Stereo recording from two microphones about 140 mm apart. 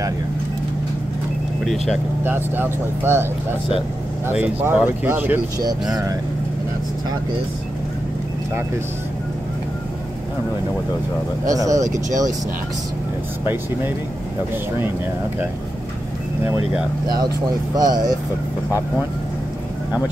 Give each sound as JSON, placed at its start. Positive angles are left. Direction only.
{"t": 1.6, "sound": "speech", "side_deg": 0}
{"t": 2.2, "sound": "speech", "side_deg": -15}
{"t": 4.3, "sound": "speech", "side_deg": -10}
{"t": 11.4, "sound": "speech", "side_deg": -25}
{"t": 16.4, "sound": "speech", "side_deg": -10}
{"t": 17.7, "sound": "speech", "side_deg": -30}